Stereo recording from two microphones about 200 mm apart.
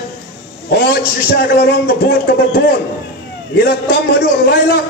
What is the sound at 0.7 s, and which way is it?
A man's voice, 55° left (ahead or behind).